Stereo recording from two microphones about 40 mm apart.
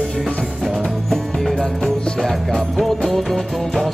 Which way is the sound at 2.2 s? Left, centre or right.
Centre.